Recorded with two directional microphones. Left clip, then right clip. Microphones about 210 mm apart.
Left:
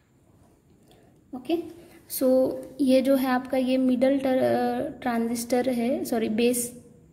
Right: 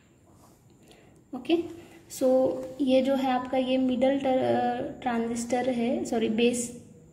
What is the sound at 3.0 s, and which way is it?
A woman's voice, 40° left (ahead or behind).